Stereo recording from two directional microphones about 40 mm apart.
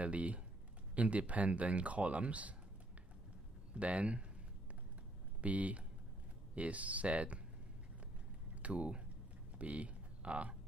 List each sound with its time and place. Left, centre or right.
0.0 s speech: right
3.7 s speech: right
5.4 s speech: right
8.6 s speech: right
9.6 s a sound: right